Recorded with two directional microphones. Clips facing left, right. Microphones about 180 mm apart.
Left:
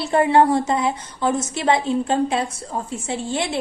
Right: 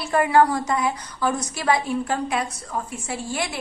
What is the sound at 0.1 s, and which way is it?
A woman's voice, 25° left (ahead or behind).